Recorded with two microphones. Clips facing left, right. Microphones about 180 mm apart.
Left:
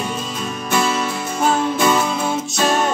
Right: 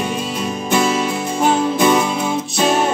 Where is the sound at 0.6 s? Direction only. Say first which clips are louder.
Right 3 dB; 15° right (ahead or behind).